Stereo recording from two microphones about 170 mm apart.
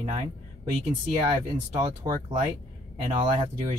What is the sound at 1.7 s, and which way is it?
Speech, 30° right (ahead or behind).